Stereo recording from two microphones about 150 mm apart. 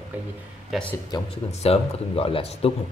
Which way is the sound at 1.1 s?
30° left (ahead or behind).